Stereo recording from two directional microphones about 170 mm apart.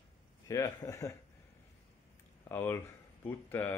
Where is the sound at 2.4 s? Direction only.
15° left (ahead or behind).